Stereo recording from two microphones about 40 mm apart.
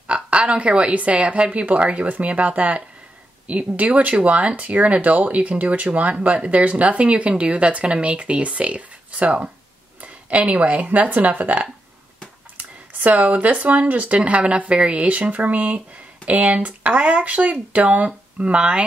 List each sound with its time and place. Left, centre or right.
0.0 s a woman's voice: right
10.9 s speech: right